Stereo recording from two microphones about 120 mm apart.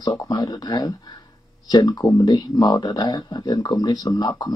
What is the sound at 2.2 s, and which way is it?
Speech, 35° left (ahead or behind).